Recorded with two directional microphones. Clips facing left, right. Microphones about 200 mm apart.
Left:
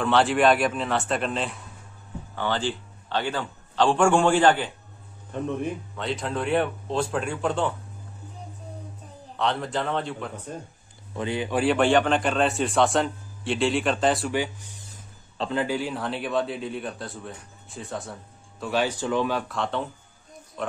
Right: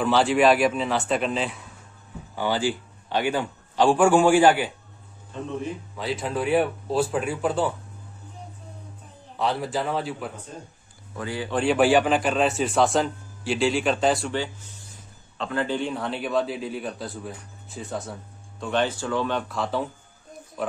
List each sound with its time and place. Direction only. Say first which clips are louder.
0.0 s a man's voice: right 1 dB; centre (ahead or behind)
5.9 s a man's voice: right 3 dB; 5° right (ahead or behind)
9.4 s a man's voice: right 1 dB; 5° right (ahead or behind)
11.1 s speech: left 3 dB; 20° left (ahead or behind)
11.5 s a man's voice: right 1 dB; centre (ahead or behind)
14.3 s a man's voice: left 2 dB; 15° left (ahead or behind)
19.3 s a man's voice: right 1 dB; centre (ahead or behind)